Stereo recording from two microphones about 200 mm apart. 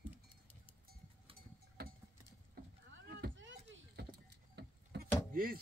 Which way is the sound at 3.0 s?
60° right (ahead or behind).